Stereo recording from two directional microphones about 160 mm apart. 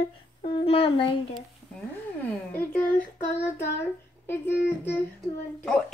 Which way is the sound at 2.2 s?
10° left (ahead or behind).